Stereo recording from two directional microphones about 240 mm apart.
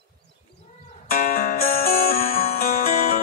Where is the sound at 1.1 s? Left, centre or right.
Left.